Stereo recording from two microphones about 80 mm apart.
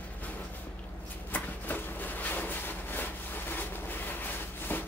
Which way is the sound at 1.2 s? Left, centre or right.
Left.